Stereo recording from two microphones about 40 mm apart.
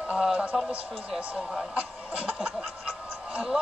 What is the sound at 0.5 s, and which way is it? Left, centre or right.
A man's voice, centre.